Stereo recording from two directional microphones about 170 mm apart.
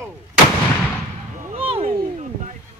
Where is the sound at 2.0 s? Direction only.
45° right (ahead or behind).